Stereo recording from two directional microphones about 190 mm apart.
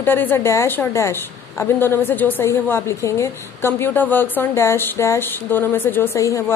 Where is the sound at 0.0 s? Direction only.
10° left (ahead or behind).